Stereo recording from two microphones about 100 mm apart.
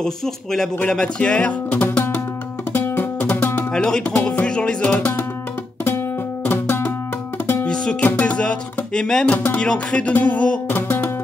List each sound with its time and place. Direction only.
0.0 s speech: 5° left (ahead or behind); by 2.2 s 20° left (ahead or behind)
2.7 s music: 20° left (ahead or behind)
3.7 s speech: 10° left (ahead or behind)
5.9 s music: 20° left (ahead or behind)
7.6 s music: 10° left (ahead or behind)
9.3 s music: 20° left (ahead or behind)